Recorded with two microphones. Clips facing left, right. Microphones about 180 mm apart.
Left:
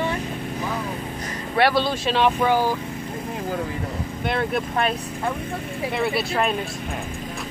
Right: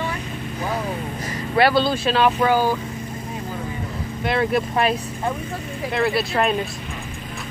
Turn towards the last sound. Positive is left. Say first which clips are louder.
# right 2 dB
turn(degrees=0)  # may be behind; listen again after turning